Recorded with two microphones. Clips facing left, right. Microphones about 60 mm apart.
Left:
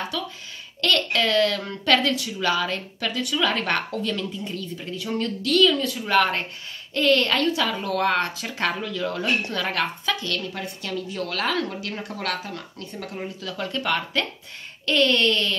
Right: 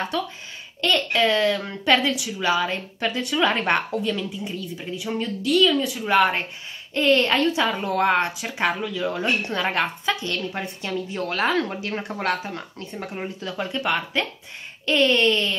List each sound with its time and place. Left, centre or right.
0.1 s speech: right
0.7 s a woman's voice: centre
9.4 s a woman's voice: right